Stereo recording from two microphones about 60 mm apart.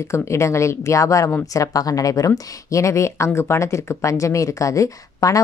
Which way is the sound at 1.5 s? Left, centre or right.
Left.